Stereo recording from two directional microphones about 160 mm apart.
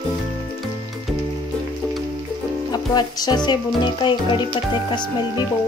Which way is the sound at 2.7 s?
25° left (ahead or behind).